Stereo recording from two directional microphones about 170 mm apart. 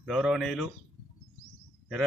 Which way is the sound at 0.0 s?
Centre (ahead or behind).